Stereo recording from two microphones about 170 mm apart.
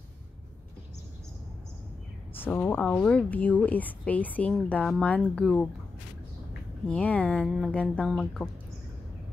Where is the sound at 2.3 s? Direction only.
10° left (ahead or behind).